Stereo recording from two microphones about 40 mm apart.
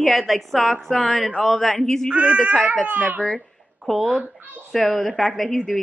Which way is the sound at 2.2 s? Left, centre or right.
Right.